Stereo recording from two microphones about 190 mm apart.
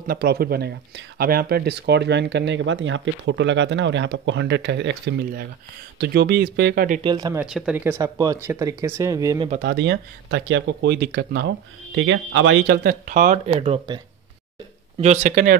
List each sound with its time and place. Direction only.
0.0 s speech: 55° right (ahead or behind)
7.0 s speech: 25° right (ahead or behind)
7.3 s speech: 5° right (ahead or behind)
8.0 s speech: 20° right (ahead or behind)
9.6 s speech: 65° right (ahead or behind); by 14.0 s 30° right (ahead or behind)
15.0 s speech: 40° right (ahead or behind)